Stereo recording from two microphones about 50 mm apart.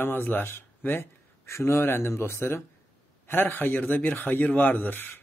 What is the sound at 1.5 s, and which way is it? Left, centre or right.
Speech, left.